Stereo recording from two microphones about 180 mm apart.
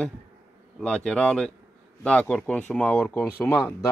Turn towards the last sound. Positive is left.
turn(degrees=15)  # may be behind; listen again after turning